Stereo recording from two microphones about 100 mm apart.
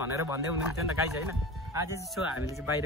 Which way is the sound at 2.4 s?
30° right (ahead or behind).